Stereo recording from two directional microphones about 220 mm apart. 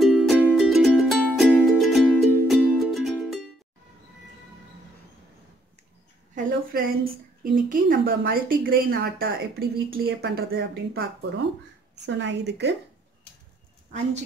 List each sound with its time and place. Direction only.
0.0 s music: centre (ahead or behind)
6.3 s a sound: 40° right (ahead or behind)
7.7 s a woman's voice: 40° right (ahead or behind)
11.9 s a woman's voice: 55° right (ahead or behind)